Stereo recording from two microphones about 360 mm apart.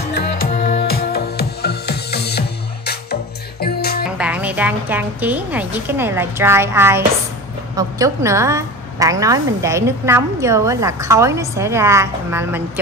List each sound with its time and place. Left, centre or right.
0.1 s music: left
4.2 s a woman's voice: centre